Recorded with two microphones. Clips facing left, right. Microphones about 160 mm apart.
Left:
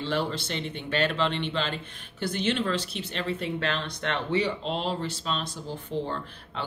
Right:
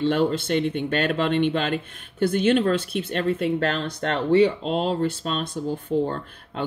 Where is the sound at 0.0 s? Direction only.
50° right (ahead or behind).